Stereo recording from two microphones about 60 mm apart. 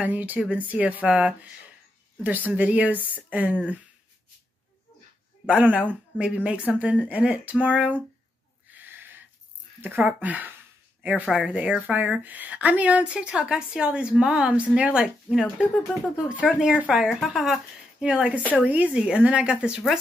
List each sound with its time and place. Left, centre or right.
0.0 s speech: right
5.5 s a woman's voice: right
7.1 s speech: right
8.7 s a sound: right
9.8 s a woman's voice: right
15.2 s speech: centre
16.3 s a woman's voice: centre